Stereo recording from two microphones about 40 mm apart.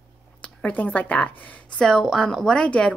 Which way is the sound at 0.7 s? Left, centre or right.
Left.